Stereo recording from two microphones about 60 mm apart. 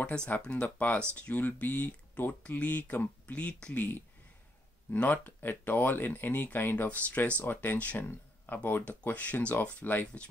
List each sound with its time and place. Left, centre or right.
0.0 s speech: centre; by 7.0 s left
7.1 s speech: left
8.0 s a sound: left
8.6 s speech: left